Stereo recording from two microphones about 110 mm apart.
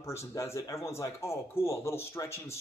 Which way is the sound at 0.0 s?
25° left (ahead or behind).